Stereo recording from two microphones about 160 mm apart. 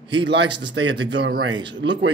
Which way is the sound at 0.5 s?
90° right.